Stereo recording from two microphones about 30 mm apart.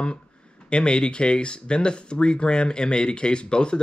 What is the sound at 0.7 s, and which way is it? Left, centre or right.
Speech, left.